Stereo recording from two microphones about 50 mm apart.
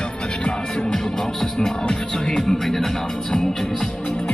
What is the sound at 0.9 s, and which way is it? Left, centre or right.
Music, centre.